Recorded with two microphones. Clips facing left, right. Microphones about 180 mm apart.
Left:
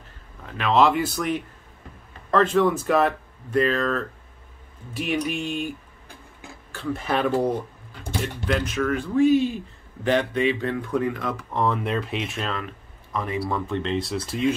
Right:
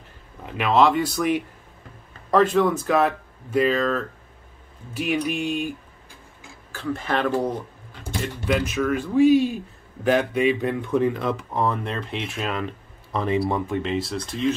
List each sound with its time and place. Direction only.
0.5 s speech: 15° right (ahead or behind)
0.7 s speech: centre (ahead or behind)
2.3 s speech: 5° right (ahead or behind)
6.7 s speech: centre (ahead or behind)
7.2 s speech: 15° left (ahead or behind)
8.2 s speech: 5° right (ahead or behind); by 11.4 s 25° right (ahead or behind)
11.5 s speech: centre (ahead or behind)
12.4 s speech: 20° right (ahead or behind)
13.5 s speech: 10° right (ahead or behind)